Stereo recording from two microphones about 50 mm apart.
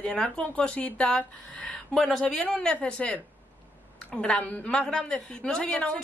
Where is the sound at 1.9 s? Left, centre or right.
Centre.